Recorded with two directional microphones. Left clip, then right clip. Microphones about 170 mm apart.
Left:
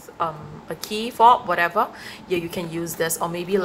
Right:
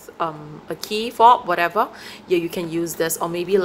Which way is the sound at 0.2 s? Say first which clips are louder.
Right 1 dB; 35° right (ahead or behind).